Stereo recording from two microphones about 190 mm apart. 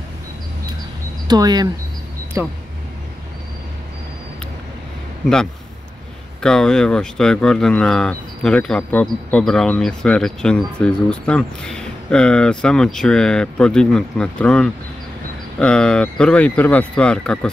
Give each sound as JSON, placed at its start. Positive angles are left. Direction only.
{"t": 1.2, "sound": "speech", "side_deg": -20}
{"t": 6.4, "sound": "speech", "side_deg": 5}